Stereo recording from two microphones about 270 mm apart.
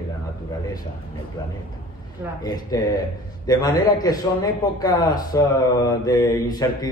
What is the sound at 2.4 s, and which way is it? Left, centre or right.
A man's voice, centre.